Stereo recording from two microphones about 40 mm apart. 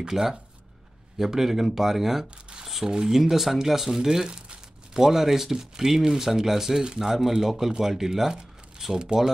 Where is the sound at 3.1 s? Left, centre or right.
Centre.